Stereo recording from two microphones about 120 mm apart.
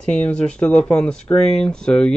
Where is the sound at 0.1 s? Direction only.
10° left (ahead or behind).